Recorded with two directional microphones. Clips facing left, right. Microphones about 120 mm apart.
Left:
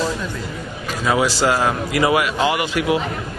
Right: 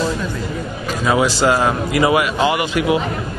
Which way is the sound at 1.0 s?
20° right (ahead or behind).